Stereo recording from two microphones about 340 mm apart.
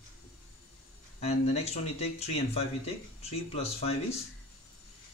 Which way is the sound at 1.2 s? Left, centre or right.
Centre.